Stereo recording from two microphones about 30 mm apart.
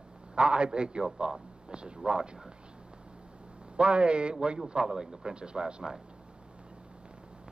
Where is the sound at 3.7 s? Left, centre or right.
Right.